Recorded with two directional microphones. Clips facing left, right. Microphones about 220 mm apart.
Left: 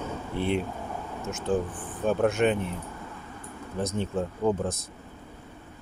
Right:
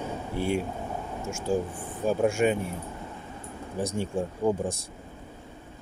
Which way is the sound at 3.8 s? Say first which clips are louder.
Even; 10° right (ahead or behind).